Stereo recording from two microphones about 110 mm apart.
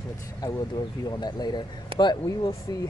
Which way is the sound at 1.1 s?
40° left (ahead or behind).